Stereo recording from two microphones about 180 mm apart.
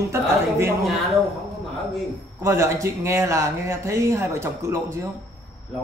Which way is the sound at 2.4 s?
15° right (ahead or behind).